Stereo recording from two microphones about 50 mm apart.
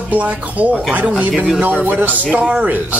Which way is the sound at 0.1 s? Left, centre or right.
Right.